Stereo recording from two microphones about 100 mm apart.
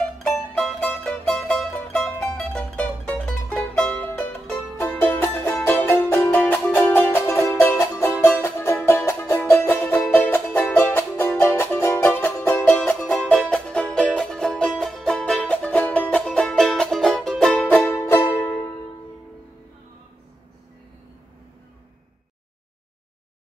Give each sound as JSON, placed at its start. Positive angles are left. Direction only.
{"t": 0.8, "sound": "music", "side_deg": 10}